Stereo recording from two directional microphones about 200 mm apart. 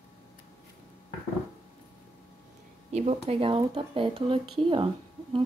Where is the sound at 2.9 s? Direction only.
30° right (ahead or behind).